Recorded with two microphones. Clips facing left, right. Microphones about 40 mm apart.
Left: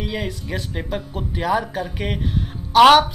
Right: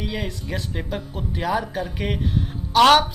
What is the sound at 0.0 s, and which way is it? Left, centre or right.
A woman's voice, centre.